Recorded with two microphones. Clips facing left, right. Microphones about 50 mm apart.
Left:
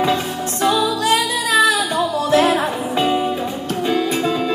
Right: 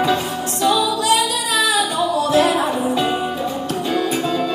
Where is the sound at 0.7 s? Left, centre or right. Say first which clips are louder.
Even; left.